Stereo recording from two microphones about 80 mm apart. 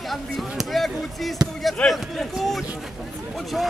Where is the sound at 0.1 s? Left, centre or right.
Centre.